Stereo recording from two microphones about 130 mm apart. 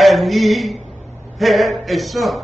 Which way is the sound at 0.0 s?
Centre (ahead or behind).